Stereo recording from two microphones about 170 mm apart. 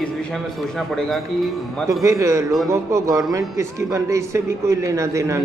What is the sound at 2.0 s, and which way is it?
A man's voice, 20° right (ahead or behind).